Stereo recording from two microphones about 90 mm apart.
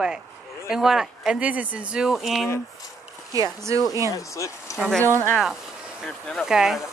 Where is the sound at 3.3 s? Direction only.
35° right (ahead or behind).